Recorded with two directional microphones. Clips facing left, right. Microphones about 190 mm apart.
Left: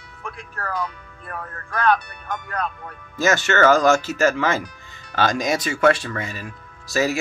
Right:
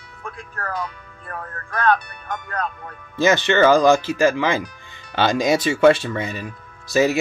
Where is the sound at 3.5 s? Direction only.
15° right (ahead or behind).